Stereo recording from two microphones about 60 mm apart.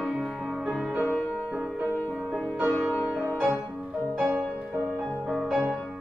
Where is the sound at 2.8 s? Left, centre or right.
Centre.